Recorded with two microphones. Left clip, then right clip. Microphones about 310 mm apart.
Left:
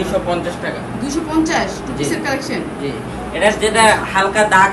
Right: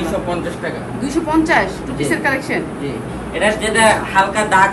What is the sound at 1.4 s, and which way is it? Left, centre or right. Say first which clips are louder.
A man's voice: right 3 dB; centre.